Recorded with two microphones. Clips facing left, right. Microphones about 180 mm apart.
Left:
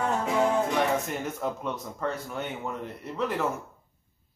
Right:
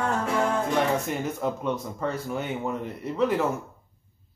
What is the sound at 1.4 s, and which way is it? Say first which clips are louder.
Speech: right 4 dB; centre (ahead or behind).